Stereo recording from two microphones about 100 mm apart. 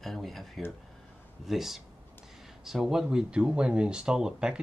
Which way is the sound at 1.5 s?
5° right (ahead or behind).